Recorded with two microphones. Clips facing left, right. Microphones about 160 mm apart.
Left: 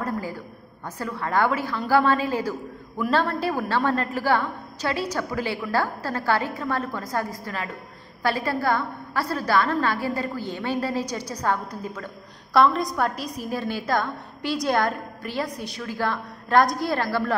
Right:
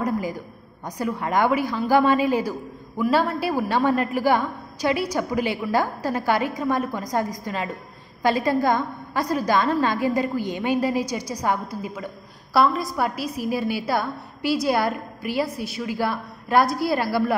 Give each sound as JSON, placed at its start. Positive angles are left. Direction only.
{"t": 0.0, "sound": "a woman's voice", "side_deg": -15}